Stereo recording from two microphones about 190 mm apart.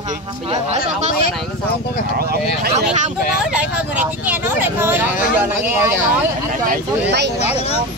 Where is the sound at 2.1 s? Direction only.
55° right (ahead or behind).